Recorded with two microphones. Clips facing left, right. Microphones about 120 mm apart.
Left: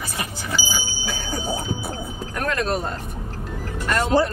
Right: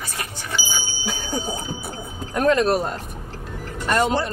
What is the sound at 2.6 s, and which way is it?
Speech, 10° right (ahead or behind).